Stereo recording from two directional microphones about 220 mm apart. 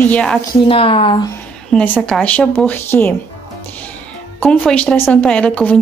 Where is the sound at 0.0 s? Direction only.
5° left (ahead or behind).